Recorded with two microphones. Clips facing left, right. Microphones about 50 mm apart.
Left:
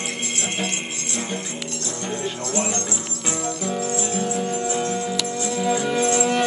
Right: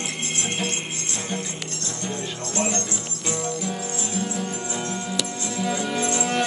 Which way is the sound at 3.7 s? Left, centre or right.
Left.